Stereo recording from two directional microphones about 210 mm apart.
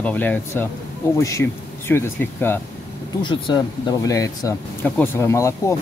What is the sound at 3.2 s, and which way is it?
Speech, 25° left (ahead or behind).